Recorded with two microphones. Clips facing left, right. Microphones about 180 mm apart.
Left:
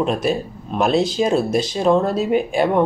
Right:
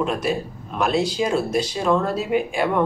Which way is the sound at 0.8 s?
25° left (ahead or behind).